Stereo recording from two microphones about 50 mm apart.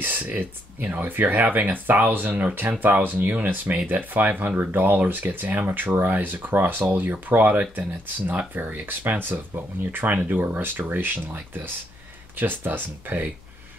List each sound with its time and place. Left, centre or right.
0.0 s speech: right